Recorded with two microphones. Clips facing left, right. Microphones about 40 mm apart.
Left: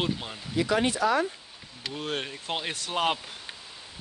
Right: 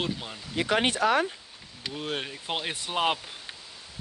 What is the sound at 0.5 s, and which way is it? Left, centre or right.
Speech, right.